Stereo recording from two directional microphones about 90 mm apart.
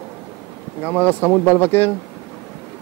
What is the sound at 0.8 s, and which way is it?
Speech, 20° left (ahead or behind).